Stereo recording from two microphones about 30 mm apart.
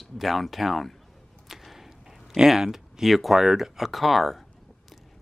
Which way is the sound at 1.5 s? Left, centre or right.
Centre.